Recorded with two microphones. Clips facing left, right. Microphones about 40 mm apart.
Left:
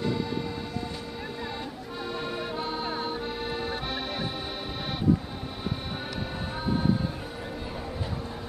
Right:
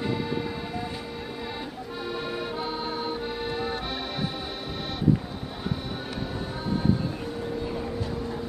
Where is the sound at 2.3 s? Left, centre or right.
Centre.